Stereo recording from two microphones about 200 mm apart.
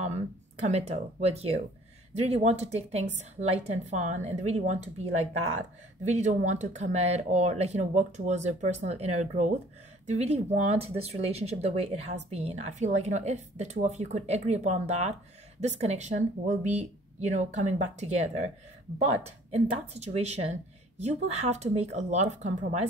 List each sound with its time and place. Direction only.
0.0 s speech: 35° right (ahead or behind)